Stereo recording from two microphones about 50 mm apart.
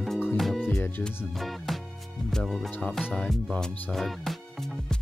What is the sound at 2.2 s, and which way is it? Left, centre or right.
Music, centre.